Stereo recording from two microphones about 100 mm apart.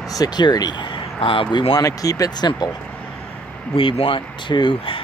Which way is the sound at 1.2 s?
65° left (ahead or behind).